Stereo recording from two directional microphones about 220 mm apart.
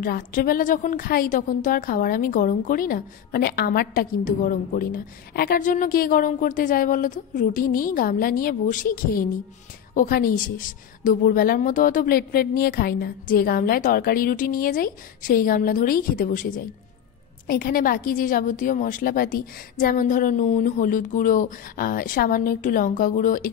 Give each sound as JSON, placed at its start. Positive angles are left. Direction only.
{"t": 0.0, "sound": "a woman's voice", "side_deg": 40}